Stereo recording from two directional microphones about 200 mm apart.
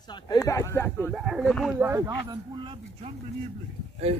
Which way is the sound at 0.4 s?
15° left (ahead or behind).